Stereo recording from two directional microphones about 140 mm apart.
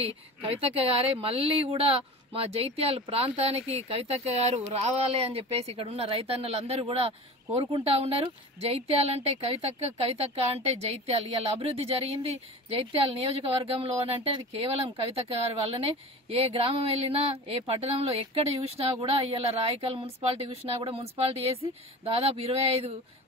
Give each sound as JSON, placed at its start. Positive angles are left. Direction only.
{"t": 0.6, "sound": "speech", "side_deg": -45}